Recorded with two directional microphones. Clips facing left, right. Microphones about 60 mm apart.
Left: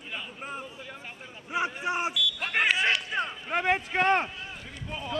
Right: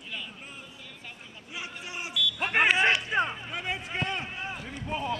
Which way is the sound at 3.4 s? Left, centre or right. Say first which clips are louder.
Left 8 dB; left.